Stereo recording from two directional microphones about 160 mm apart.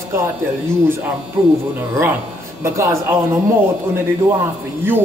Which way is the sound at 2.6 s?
15° right (ahead or behind).